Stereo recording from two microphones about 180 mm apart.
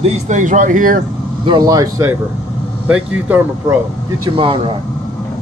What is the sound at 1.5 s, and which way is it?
Speech, 20° right (ahead or behind).